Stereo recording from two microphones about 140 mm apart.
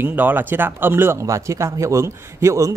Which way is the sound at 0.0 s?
15° right (ahead or behind).